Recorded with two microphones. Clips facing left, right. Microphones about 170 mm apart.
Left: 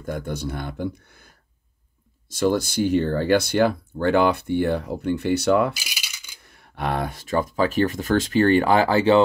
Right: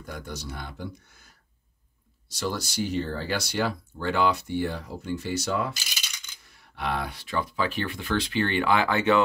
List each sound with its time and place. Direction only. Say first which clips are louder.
0.0 s speech: left 9 dB; 55° left (ahead or behind)
5.7 s coin: left 4 dB; 5° left (ahead or behind)
6.4 s speech: left 4 dB; 55° left (ahead or behind); by 9.2 s 30° left (ahead or behind)